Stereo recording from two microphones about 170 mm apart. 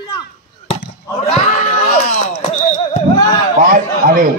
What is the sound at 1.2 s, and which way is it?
Speech, 40° left (ahead or behind).